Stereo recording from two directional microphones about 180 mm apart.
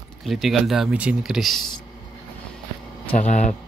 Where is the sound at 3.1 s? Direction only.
40° left (ahead or behind).